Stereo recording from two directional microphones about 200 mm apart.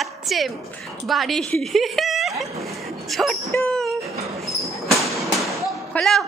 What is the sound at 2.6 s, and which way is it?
Bow-wow, centre (ahead or behind).